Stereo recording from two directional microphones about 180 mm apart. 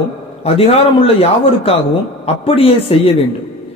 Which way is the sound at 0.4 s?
35° left (ahead or behind).